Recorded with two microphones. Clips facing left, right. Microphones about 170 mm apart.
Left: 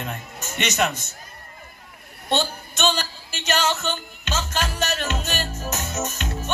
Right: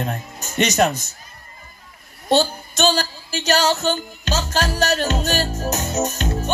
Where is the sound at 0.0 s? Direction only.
40° right (ahead or behind).